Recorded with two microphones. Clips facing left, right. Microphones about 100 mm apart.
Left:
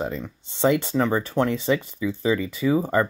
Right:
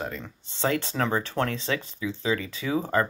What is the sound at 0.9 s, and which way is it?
Speech, 5° left (ahead or behind).